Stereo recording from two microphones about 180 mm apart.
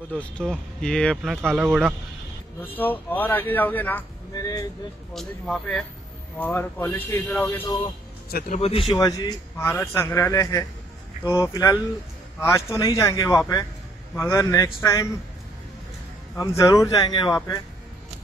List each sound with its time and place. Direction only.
0.1 s speech: 5° left (ahead or behind)
2.6 s a man's voice: 10° left (ahead or behind)
5.1 s a man's voice: 5° left (ahead or behind)
8.3 s a man's voice: 55° left (ahead or behind)
8.5 s a man's voice: 35° left (ahead or behind)
8.9 s a man's voice: 20° left (ahead or behind)
16.3 s speech: 20° left (ahead or behind)